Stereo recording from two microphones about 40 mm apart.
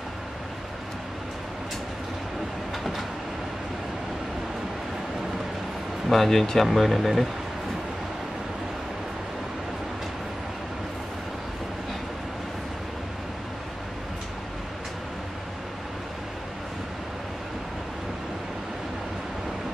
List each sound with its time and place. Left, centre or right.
6.0 s speech: centre